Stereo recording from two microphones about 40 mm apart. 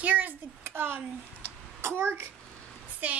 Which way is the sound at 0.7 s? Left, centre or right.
Right.